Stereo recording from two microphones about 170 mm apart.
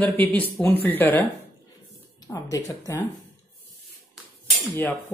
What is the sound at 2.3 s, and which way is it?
Speech, 20° left (ahead or behind).